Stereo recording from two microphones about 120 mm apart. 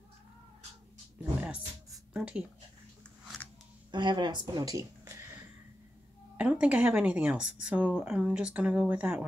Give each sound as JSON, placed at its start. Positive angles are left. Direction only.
{"t": 2.1, "sound": "a woman's voice", "side_deg": -10}
{"t": 3.9, "sound": "a woman's voice", "side_deg": -40}
{"t": 6.3, "sound": "a woman's voice", "side_deg": -10}